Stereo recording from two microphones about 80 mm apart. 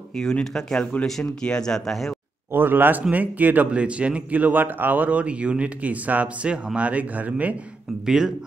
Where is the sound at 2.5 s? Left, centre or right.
Right.